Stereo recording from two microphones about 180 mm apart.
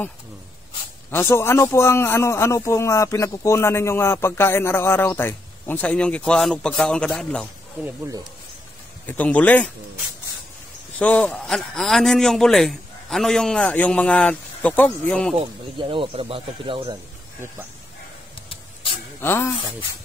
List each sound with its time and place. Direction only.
1.1 s a man's voice: 15° left (ahead or behind)
7.8 s speech: 15° right (ahead or behind)
9.0 s a man's voice: 10° left (ahead or behind)
11.0 s a man's voice: 5° left (ahead or behind)
15.3 s speech: 30° right (ahead or behind)
19.2 s a man's voice: 15° left (ahead or behind)